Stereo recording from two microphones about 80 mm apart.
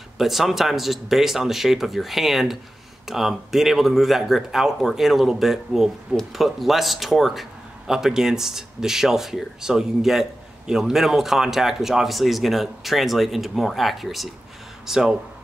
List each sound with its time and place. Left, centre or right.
0.2 s speech: centre